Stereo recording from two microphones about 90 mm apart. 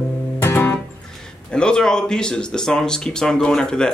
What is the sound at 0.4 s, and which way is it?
Music, 25° left (ahead or behind).